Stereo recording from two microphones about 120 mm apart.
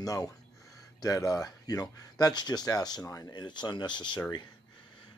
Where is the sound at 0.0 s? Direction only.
30° left (ahead or behind).